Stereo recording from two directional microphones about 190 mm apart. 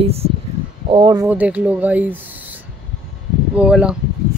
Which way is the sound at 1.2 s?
10° right (ahead or behind).